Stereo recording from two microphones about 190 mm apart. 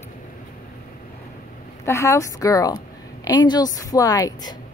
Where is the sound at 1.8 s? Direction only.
15° left (ahead or behind).